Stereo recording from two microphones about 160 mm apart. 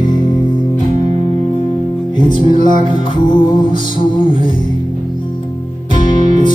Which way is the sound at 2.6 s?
30° left (ahead or behind).